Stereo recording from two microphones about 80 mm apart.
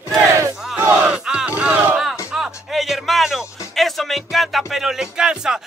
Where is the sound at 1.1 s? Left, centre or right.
Centre.